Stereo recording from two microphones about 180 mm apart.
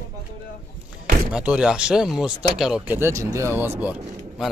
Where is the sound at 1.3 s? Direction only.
5° right (ahead or behind).